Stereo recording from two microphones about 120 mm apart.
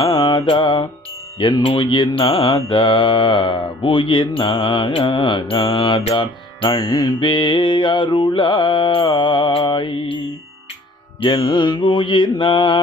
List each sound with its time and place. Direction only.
0.0 s mantra: 40° left (ahead or behind)
6.1 s music: 40° left (ahead or behind)
11.1 s music: 40° left (ahead or behind)